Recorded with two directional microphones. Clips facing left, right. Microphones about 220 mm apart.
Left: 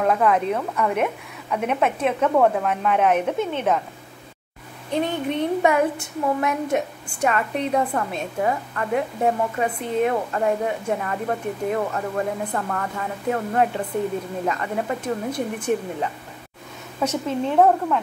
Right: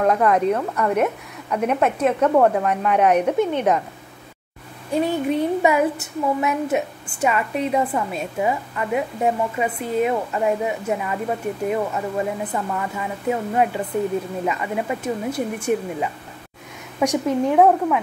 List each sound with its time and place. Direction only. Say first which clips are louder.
0.0 s a woman's voice: right 2 dB; centre (ahead or behind)
4.9 s a woman's voice: right 3 dB; 10° right (ahead or behind)